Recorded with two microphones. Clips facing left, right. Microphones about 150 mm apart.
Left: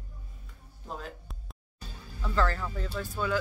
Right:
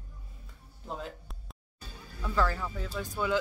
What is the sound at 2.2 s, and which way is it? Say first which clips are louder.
Speech: left 1 dB; 10° right (ahead or behind).